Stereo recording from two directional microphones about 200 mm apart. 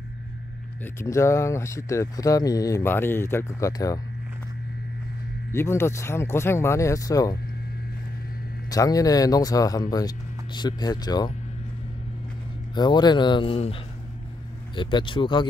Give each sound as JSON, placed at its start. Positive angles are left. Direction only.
{"t": 0.9, "sound": "speech", "side_deg": 15}
{"t": 5.5, "sound": "speech", "side_deg": 15}
{"t": 8.6, "sound": "speech", "side_deg": 20}
{"t": 12.7, "sound": "speech", "side_deg": 20}
{"t": 14.8, "sound": "speech", "side_deg": 25}